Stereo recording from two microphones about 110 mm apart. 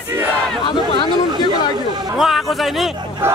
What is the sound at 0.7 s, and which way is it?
Chatter, 45° left (ahead or behind).